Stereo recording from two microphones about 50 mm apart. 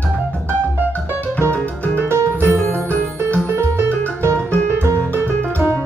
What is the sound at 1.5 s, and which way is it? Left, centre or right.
Music, left.